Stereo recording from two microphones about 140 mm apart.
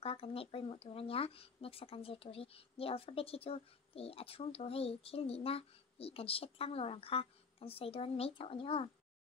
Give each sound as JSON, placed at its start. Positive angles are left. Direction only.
{"t": 0.0, "sound": "speech", "side_deg": 45}